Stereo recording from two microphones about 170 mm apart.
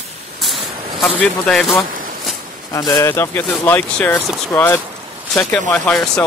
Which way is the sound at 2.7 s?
20° left (ahead or behind).